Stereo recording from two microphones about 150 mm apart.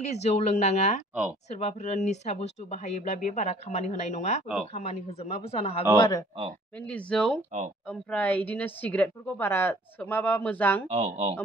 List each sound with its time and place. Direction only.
0.0 s speech: 45° left (ahead or behind)
5.9 s speech: 30° left (ahead or behind)
6.9 s a woman's voice: 5° left (ahead or behind)
10.9 s speech: 45° right (ahead or behind)